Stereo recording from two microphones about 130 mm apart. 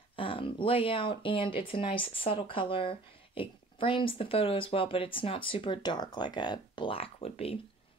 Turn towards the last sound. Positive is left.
turn(degrees=50)  # may be behind; listen again after turning